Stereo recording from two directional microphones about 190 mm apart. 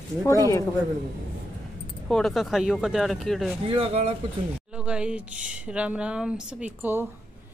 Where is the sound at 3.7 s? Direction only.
30° right (ahead or behind).